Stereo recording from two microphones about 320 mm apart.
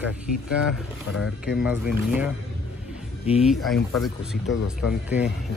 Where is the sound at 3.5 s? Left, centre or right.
Centre.